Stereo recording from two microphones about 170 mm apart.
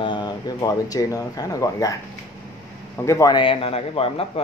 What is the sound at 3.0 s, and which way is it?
A man's voice, 20° left (ahead or behind).